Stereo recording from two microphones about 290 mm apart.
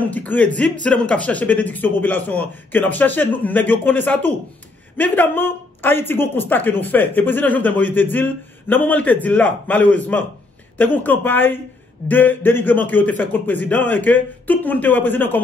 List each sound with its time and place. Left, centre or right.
0.0 s a man's voice: centre